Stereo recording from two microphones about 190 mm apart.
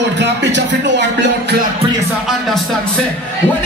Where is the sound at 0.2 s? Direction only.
65° right (ahead or behind).